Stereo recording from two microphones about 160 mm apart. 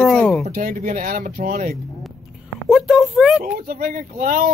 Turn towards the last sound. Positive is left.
turn(degrees=-60)  # may be behind; listen again after turning